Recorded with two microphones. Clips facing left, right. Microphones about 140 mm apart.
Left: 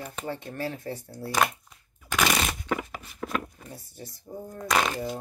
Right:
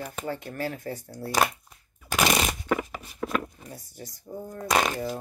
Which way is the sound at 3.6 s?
25° left (ahead or behind).